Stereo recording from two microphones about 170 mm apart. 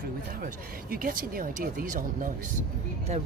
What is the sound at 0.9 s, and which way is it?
Speech, 60° right (ahead or behind).